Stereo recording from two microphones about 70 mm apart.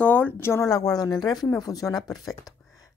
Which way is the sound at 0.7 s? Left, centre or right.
Left.